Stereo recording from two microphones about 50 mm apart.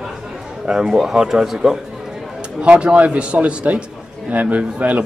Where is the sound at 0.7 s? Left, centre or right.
Centre.